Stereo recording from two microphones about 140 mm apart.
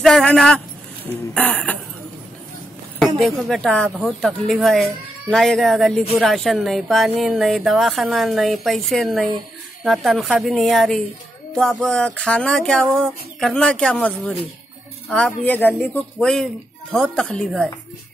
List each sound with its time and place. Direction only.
0.0 s speech: 5° left (ahead or behind)
3.0 s speech: 5° left (ahead or behind)